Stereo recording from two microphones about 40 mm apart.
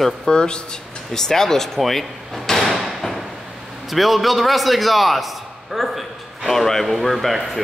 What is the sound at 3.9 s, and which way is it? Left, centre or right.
A man's voice, centre.